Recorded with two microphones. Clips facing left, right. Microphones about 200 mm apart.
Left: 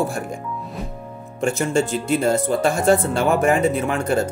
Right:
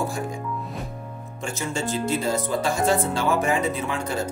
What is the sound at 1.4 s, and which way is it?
Speech, 55° left (ahead or behind).